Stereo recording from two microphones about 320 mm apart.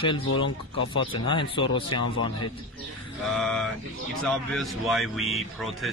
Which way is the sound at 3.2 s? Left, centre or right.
Centre.